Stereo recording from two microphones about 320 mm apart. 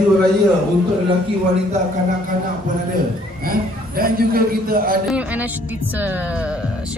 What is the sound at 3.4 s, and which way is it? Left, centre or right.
A man's voice, right.